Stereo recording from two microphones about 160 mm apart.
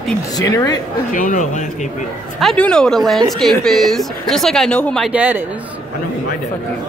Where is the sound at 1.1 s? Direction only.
55° left (ahead or behind).